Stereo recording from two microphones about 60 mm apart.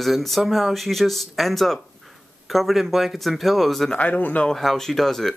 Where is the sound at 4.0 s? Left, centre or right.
Left.